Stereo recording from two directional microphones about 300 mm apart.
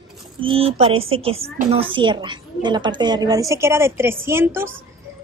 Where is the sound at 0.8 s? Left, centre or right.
Centre.